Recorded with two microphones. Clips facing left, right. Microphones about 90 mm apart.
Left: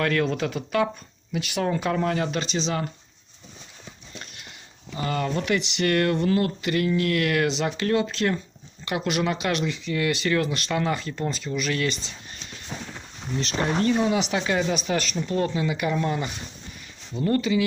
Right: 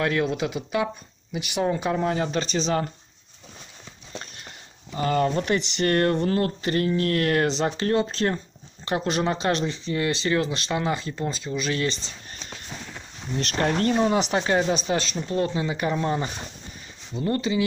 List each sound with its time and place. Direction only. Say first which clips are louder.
0.0 s speech: even; 20° right (ahead or behind)
2.4 s speech: right 2 dB; 40° right (ahead or behind)
4.9 s speech: right 4 dB; 35° right (ahead or behind)
12.6 s a sound: left 4 dB; 5° left (ahead or behind)
14.0 s speech: right 2 dB; 40° right (ahead or behind)